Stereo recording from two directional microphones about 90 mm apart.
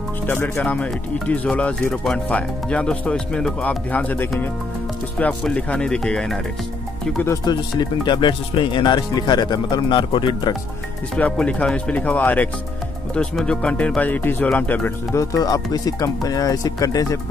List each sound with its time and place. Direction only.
0.3 s speech: 20° left (ahead or behind)
7.5 s speech: 50° left (ahead or behind); by 10.5 s 65° left (ahead or behind)
11.1 s speech: 15° left (ahead or behind)
15.1 s speech: 45° left (ahead or behind)